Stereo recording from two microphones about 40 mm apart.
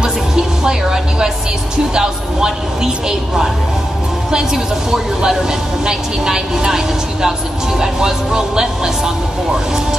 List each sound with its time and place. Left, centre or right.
0.7 s a woman's voice: centre
4.9 s a woman's voice: centre